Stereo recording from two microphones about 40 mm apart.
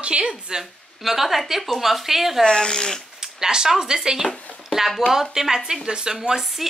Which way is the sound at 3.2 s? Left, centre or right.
Centre.